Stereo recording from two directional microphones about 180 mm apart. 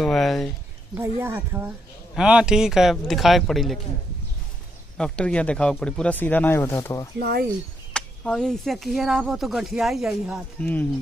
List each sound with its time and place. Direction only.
0.0 s speech: centre (ahead or behind)
0.9 s speech: 10° right (ahead or behind)
4.9 s speech: 5° left (ahead or behind)
7.2 s speech: 60° right (ahead or behind)
7.9 s speech: 5° left (ahead or behind)